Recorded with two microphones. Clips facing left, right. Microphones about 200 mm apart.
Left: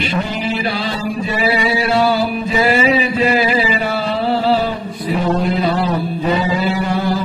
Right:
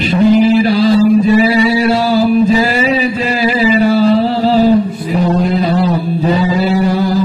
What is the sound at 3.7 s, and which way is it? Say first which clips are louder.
Mantra: right 10 dB; 40° right (ahead or behind).